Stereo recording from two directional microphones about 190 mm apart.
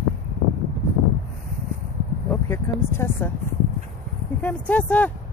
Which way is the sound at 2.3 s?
10° left (ahead or behind).